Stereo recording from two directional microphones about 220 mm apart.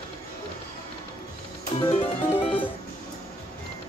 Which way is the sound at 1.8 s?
20° left (ahead or behind).